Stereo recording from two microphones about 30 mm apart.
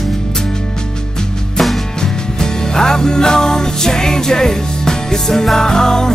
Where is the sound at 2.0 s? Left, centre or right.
Left.